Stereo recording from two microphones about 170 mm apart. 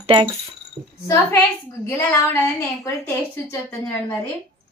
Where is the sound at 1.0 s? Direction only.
15° left (ahead or behind).